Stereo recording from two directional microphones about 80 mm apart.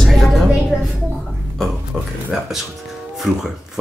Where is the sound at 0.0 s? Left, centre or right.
Centre.